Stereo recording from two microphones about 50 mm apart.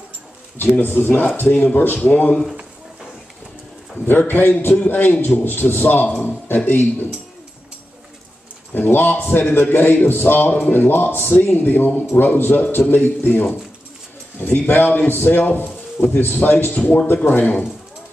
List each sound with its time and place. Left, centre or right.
0.7 s a man's voice: left
3.9 s a man's voice: left
8.7 s a man's voice: left
14.4 s a man's voice: left